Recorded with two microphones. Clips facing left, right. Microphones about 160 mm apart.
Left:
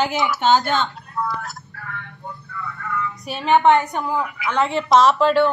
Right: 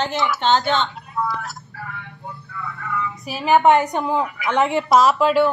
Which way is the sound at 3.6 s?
20° right (ahead or behind).